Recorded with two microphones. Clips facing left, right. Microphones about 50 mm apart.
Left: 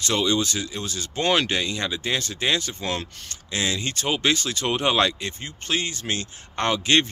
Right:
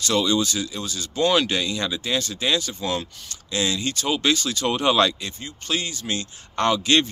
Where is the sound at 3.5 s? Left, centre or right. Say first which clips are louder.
Right 2 dB; left.